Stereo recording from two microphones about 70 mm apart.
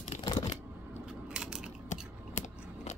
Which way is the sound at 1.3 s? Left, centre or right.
Centre.